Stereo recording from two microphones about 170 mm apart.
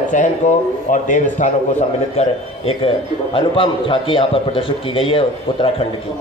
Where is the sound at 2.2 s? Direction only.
35° left (ahead or behind).